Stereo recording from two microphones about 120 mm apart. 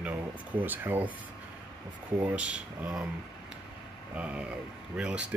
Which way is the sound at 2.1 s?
15° right (ahead or behind).